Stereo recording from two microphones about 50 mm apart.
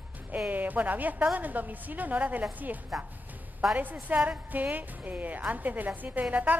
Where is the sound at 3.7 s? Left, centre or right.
Right.